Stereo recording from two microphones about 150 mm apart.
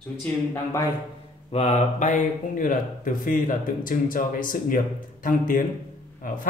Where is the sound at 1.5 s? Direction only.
45° left (ahead or behind).